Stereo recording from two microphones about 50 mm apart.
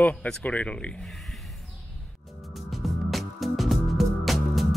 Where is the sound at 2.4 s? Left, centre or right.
Centre.